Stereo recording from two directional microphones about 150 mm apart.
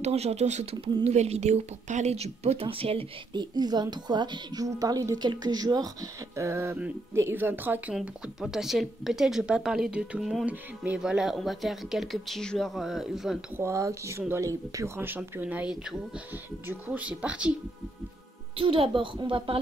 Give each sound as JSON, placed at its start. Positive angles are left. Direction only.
{"t": 0.0, "sound": "speech", "side_deg": -45}
{"t": 13.6, "sound": "speech", "side_deg": -20}
{"t": 18.6, "sound": "a woman's voice", "side_deg": -35}